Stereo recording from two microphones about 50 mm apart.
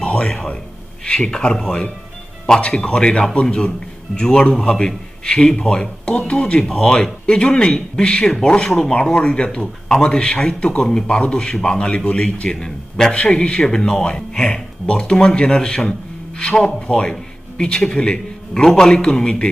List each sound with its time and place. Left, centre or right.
0.0 s a man's voice: left
6.6 s speech: centre